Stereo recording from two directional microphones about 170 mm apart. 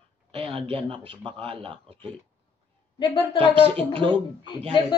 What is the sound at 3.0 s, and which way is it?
Speech, 30° left (ahead or behind).